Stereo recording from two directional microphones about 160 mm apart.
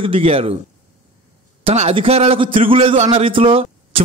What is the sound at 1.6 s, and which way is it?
A man's voice, 40° right (ahead or behind).